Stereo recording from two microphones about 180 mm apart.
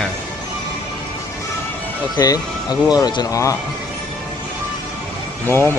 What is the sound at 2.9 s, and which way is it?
Speech, 20° left (ahead or behind).